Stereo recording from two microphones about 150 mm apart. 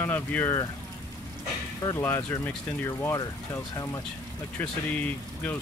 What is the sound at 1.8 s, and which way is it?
Speech, 20° left (ahead or behind).